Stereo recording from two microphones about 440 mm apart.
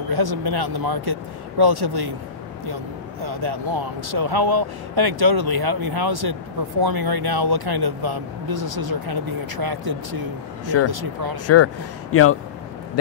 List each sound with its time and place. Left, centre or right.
0.1 s speech: right
11.4 s speech: left